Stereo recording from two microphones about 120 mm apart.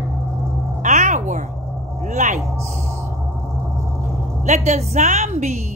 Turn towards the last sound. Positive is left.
turn(degrees=-70)  # may be behind; listen again after turning